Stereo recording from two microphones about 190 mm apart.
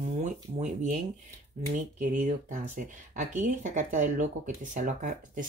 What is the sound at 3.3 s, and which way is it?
Speech, 40° right (ahead or behind).